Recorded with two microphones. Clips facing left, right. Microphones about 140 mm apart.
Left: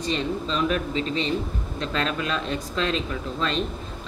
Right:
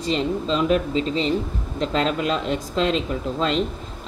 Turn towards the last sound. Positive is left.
turn(degrees=-25)  # may be behind; listen again after turning